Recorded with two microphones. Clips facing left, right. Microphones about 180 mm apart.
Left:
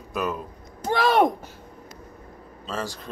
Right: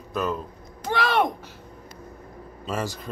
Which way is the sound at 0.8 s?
40° left (ahead or behind).